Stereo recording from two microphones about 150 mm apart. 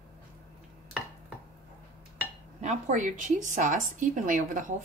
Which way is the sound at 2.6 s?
55° right (ahead or behind).